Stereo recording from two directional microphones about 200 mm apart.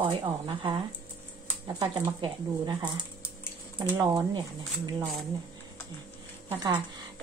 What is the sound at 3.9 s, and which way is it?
Speech, 20° right (ahead or behind).